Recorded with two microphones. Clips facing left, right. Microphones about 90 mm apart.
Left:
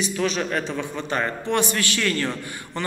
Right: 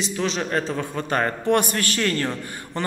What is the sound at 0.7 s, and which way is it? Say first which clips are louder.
A man's voice: right 2 dB; 45° right (ahead or behind).